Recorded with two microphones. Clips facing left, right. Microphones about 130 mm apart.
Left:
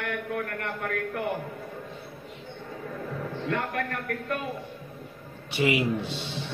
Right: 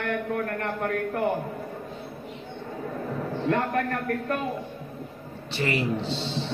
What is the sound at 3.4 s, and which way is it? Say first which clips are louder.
Speech: right 5 dB; 35° right (ahead or behind).